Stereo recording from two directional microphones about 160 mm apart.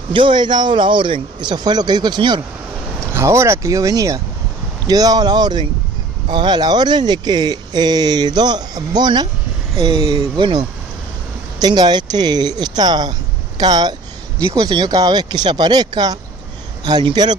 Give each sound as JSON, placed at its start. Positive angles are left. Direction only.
{"t": 0.1, "sound": "speech", "side_deg": -30}
{"t": 3.1, "sound": "speech", "side_deg": -15}
{"t": 11.6, "sound": "speech", "side_deg": -25}